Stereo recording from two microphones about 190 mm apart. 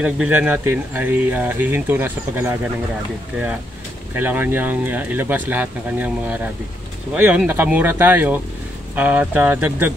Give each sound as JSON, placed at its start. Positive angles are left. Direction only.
{"t": 0.0, "sound": "speech", "side_deg": -5}
{"t": 4.1, "sound": "speech", "side_deg": -10}